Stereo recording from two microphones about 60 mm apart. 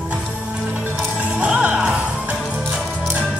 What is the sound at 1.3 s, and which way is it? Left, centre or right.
Music, centre.